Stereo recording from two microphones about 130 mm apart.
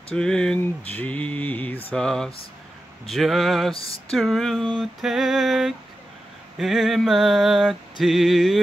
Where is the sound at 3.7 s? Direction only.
45° left (ahead or behind).